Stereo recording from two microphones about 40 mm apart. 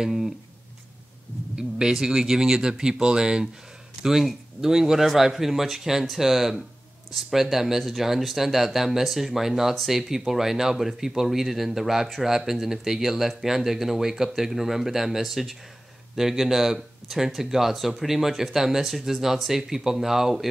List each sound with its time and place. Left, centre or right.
0.0 s speech: centre
1.6 s speech: centre
4.0 s speech: centre